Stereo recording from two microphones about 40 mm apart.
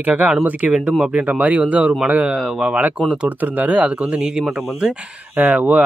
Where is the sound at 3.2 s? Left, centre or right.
Right.